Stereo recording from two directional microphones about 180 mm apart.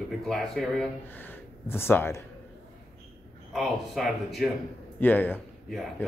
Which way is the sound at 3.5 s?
Centre (ahead or behind).